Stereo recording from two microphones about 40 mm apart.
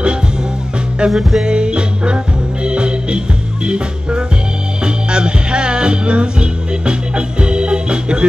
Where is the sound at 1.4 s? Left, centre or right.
Right.